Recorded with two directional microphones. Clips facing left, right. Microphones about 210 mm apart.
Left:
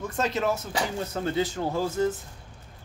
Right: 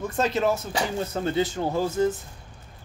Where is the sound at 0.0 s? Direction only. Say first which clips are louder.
Right 3 dB; 30° right (ahead or behind).